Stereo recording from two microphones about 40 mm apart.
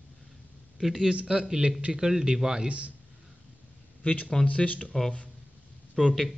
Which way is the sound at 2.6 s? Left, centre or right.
Right.